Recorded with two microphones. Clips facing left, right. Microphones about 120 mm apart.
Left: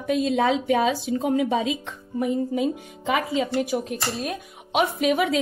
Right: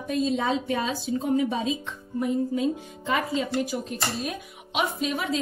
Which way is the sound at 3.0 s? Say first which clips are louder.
Left 3 dB; 90° left.